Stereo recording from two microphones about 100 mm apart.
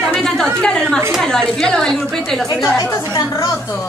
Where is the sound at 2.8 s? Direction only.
35° left (ahead or behind).